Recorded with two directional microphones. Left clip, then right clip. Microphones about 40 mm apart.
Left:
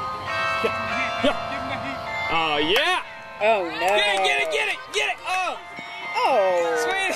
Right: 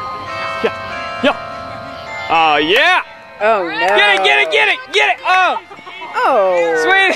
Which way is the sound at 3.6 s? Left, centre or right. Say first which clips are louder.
Right 9 dB; right.